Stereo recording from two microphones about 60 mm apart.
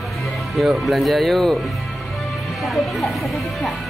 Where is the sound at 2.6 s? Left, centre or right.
Centre.